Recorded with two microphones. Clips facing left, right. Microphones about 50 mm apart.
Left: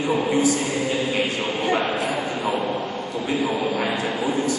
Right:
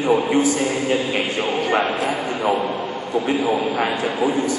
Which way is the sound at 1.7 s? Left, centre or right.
Right.